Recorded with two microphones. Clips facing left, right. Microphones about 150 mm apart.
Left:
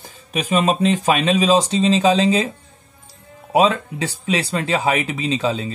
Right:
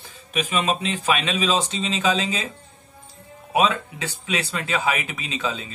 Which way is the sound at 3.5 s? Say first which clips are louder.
Left 5 dB; 35° left (ahead or behind).